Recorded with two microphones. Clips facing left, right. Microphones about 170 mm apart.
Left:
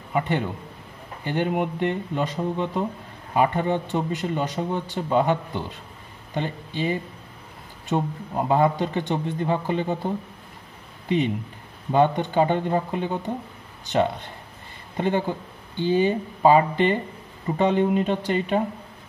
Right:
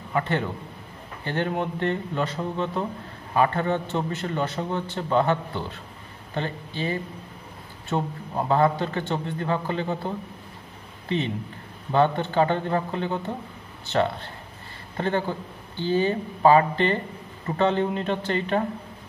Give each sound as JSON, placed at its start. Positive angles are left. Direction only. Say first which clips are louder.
{"t": 0.1, "sound": "a man's voice", "louder": "left 1 dB", "side_deg": 15}